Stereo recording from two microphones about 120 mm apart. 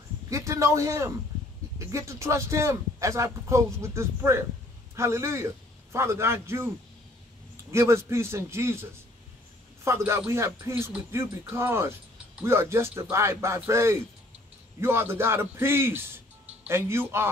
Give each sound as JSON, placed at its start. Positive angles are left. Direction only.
{"t": 0.3, "sound": "a man's voice", "side_deg": -25}
{"t": 7.7, "sound": "speech", "side_deg": -25}
{"t": 9.8, "sound": "speech", "side_deg": -25}